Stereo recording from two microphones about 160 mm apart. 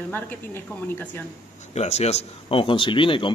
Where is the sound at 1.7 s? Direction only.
45° left (ahead or behind).